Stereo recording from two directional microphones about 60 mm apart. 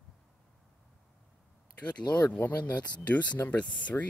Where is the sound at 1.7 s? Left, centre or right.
Left.